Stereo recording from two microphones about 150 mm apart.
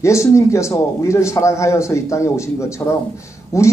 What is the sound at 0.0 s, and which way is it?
A man's voice, 20° left (ahead or behind).